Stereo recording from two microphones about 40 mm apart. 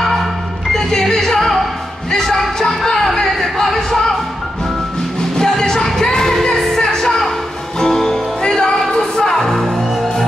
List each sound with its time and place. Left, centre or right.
0.0 s music: centre
5.4 s music: centre